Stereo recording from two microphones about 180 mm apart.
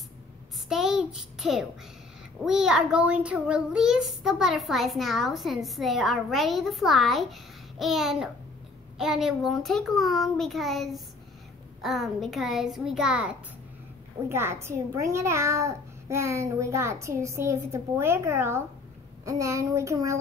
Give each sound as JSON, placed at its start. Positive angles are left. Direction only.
{"t": 0.7, "sound": "a child's voice", "side_deg": -5}
{"t": 14.3, "sound": "a child's voice", "side_deg": -15}